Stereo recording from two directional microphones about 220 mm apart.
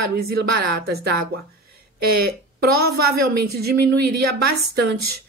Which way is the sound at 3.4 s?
45° right (ahead or behind).